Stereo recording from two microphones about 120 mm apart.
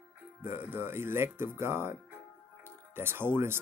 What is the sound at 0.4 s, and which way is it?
Speech, 15° right (ahead or behind).